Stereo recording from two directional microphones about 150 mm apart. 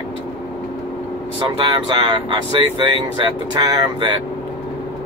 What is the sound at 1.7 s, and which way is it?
Speech, 30° right (ahead or behind).